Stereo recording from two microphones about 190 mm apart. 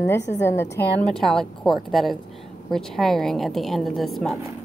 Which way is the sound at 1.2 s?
Centre (ahead or behind).